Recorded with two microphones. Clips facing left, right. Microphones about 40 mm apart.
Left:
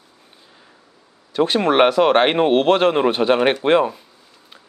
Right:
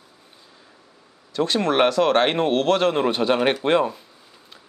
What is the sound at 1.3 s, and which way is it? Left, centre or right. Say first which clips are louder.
A man's voice: left 4 dB; centre.